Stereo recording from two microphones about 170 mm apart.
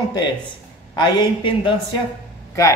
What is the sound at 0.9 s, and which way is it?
Speech, 25° left (ahead or behind).